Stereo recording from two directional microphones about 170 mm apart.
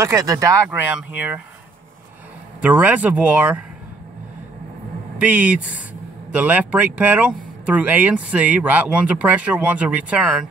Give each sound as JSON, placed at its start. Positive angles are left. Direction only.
{"t": 0.0, "sound": "speech", "side_deg": -20}
{"t": 0.7, "sound": "speech", "side_deg": -10}
{"t": 2.6, "sound": "speech", "side_deg": -10}
{"t": 5.2, "sound": "speech", "side_deg": -10}